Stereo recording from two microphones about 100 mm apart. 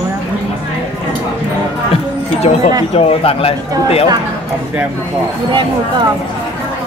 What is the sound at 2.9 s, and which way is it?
Speech, 75° left (ahead or behind).